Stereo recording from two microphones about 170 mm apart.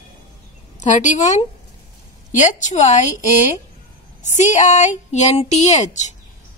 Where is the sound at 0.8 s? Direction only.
45° left (ahead or behind).